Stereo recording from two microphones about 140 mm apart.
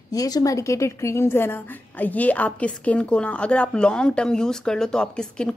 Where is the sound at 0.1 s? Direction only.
25° left (ahead or behind).